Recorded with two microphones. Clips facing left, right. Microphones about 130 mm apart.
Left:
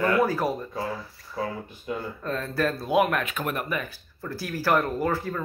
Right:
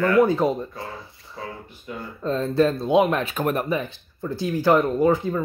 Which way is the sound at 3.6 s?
25° right (ahead or behind).